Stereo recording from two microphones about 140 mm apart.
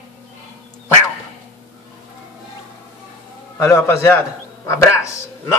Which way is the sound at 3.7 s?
20° left (ahead or behind).